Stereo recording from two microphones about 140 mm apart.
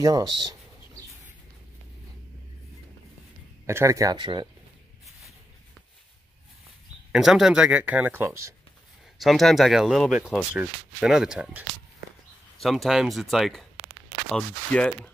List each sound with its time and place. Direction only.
0.0 s speech: 30° right (ahead or behind)
3.6 s speech: 20° right (ahead or behind)
7.1 s speech: 5° right (ahead or behind)
9.2 s speech: centre (ahead or behind)